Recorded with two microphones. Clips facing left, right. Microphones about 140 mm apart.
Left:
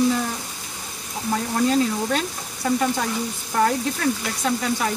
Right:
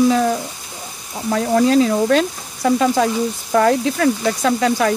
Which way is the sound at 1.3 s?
90° right.